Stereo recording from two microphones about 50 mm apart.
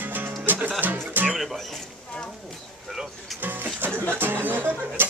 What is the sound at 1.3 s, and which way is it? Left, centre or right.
Music, centre.